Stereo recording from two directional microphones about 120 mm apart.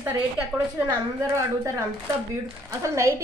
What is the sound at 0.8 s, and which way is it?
Speech, 25° right (ahead or behind).